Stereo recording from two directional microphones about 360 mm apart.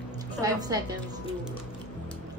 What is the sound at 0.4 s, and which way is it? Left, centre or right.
Speech, centre.